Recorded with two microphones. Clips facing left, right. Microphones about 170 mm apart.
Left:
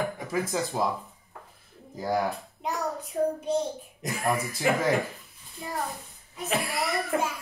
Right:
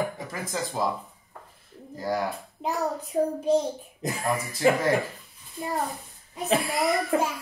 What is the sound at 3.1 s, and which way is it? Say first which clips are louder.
Speech: right 1 dB; 35° right (ahead or behind).